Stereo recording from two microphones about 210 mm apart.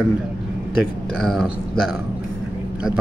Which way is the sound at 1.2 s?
Centre (ahead or behind).